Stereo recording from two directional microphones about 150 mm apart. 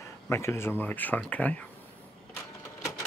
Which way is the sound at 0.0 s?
20° left (ahead or behind).